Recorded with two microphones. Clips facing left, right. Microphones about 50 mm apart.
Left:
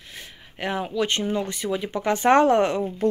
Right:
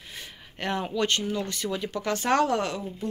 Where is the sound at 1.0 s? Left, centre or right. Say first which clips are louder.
Left 3 dB; left.